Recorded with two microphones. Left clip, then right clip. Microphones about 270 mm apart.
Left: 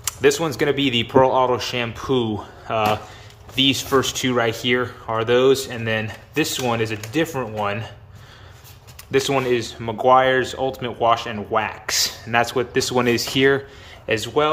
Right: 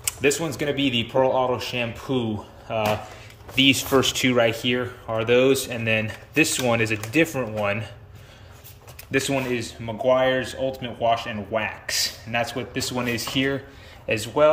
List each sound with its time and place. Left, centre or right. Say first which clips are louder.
0.0 s speech: left 4 dB; centre
9.1 s speech: left 5 dB; centre